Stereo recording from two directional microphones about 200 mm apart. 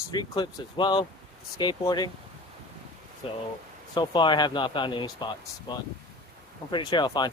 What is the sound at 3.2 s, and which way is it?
Speech, 25° left (ahead or behind).